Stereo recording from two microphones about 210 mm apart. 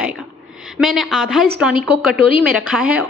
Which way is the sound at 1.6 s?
5° right (ahead or behind).